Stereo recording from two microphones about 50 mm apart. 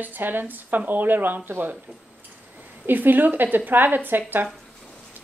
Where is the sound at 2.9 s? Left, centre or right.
Right.